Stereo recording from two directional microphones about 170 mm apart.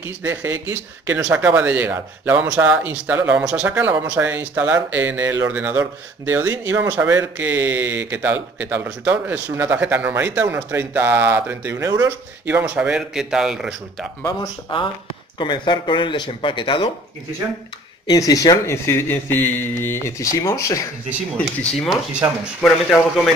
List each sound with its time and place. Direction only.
0.2 s a man's voice: 10° right (ahead or behind)
14.7 s a man's voice: 30° left (ahead or behind)
18.0 s a man's voice: 20° left (ahead or behind)
21.6 s a man's voice: centre (ahead or behind)